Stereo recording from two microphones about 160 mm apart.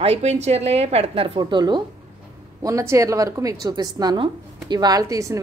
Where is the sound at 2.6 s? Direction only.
20° right (ahead or behind).